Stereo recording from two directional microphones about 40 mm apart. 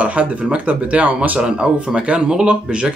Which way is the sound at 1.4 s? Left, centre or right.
Centre.